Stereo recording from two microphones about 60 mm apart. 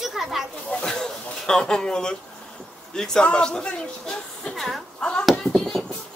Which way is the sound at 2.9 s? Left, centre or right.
Centre.